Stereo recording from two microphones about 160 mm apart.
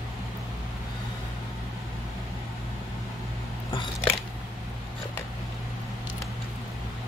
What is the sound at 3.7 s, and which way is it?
Biting, 30° left (ahead or behind).